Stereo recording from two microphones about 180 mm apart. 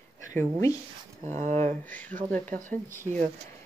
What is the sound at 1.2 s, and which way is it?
Speech, 40° right (ahead or behind).